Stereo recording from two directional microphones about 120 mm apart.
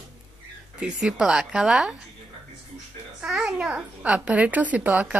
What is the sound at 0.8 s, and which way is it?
A child's voice, 5° right (ahead or behind).